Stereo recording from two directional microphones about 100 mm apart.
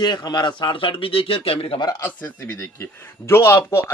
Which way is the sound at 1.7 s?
40° left (ahead or behind).